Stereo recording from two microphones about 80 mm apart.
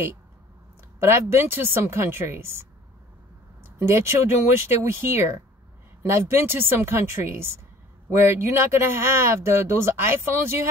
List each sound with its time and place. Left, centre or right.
0.9 s speech: right
3.6 s speech: right